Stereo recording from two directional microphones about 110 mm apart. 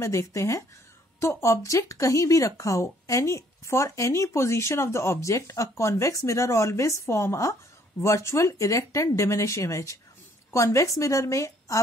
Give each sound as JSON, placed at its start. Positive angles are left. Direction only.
{"t": 0.0, "sound": "speech", "side_deg": 30}